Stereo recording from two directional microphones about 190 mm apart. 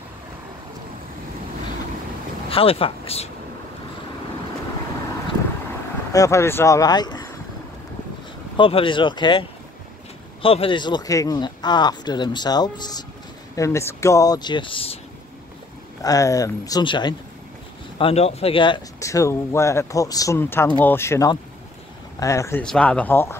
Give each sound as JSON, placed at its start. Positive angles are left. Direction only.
{"t": 2.5, "sound": "speech", "side_deg": 30}
{"t": 6.1, "sound": "speech", "side_deg": 15}
{"t": 8.5, "sound": "speech", "side_deg": 25}
{"t": 16.0, "sound": "speech", "side_deg": 20}